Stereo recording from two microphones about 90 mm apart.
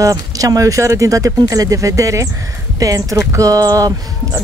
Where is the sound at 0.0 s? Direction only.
40° right (ahead or behind).